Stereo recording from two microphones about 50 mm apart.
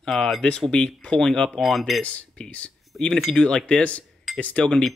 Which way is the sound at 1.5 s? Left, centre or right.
Centre.